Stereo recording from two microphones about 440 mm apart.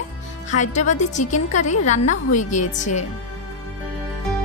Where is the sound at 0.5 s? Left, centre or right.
Centre.